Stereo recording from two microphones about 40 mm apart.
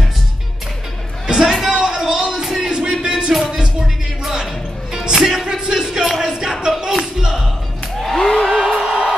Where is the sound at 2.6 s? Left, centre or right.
Centre.